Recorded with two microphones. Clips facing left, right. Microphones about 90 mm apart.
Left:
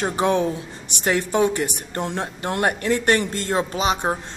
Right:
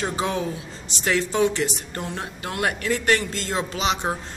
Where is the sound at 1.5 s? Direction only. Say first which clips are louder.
Left 1 dB; 40° left (ahead or behind).